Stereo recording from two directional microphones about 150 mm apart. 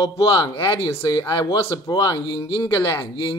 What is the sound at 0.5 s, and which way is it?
Speech, 35° left (ahead or behind).